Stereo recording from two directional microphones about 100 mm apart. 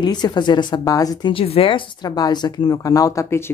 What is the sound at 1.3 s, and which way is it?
Speech, 70° left (ahead or behind).